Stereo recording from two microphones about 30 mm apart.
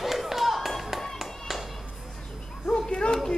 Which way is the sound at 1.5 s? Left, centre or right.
Centre.